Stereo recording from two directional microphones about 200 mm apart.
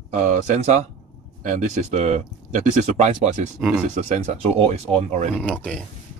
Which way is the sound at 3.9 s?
35° right (ahead or behind).